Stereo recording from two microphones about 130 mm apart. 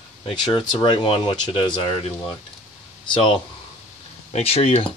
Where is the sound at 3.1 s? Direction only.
40° left (ahead or behind).